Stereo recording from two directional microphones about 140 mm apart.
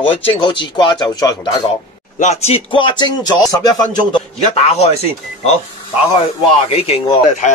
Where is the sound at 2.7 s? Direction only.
35° left (ahead or behind).